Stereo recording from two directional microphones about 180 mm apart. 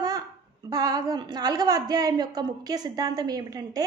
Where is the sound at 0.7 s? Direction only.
20° right (ahead or behind).